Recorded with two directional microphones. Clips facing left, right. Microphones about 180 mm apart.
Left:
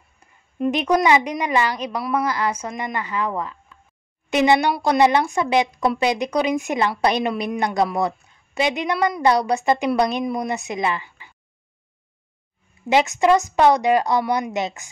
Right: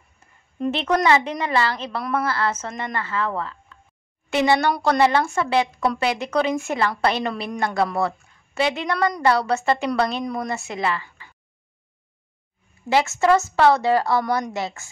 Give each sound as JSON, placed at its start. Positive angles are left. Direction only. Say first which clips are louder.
{"t": 0.2, "sound": "a sound", "louder": "left 1 dB", "side_deg": 15}
{"t": 0.6, "sound": "a woman's voice", "louder": "left 2 dB", "side_deg": 15}
{"t": 12.9, "sound": "a woman's voice", "louder": "left 1 dB", "side_deg": 15}